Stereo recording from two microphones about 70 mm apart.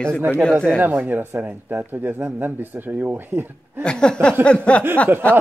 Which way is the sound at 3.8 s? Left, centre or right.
Centre.